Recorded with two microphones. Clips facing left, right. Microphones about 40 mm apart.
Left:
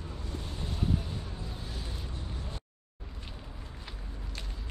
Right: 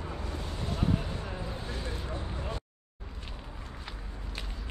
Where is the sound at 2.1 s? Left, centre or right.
Right.